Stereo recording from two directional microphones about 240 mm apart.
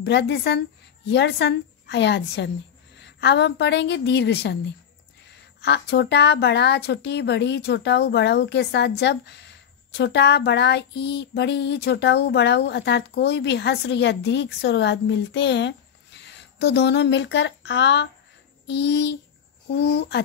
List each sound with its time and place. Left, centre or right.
0.0 s a woman's voice: left